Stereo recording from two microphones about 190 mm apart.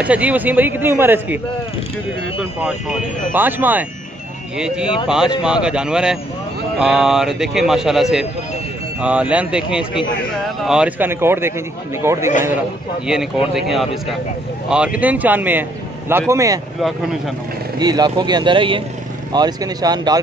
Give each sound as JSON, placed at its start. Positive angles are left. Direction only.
{"t": 0.0, "sound": "speech", "side_deg": -5}
{"t": 2.6, "sound": "a man's voice", "side_deg": -5}
{"t": 13.0, "sound": "a man's voice", "side_deg": -5}
{"t": 15.0, "sound": "speech", "side_deg": -10}
{"t": 17.7, "sound": "speech", "side_deg": -20}